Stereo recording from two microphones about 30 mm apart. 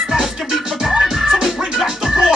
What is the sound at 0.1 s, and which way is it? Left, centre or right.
Music, right.